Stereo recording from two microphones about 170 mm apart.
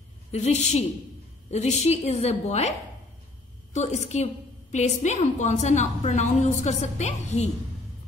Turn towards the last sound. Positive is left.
turn(degrees=40)  # may be behind; listen again after turning